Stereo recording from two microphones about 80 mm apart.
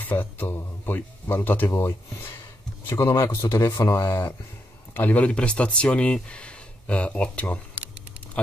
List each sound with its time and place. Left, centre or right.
0.0 s a sound: left
0.8 s speech: left
3.5 s speech: left
4.9 s speech: left